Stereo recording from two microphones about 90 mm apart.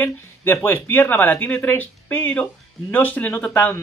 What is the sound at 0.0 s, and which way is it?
A man's voice, 20° left (ahead or behind).